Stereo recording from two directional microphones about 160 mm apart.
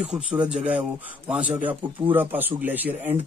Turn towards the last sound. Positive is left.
turn(degrees=-10)  # may be behind; listen again after turning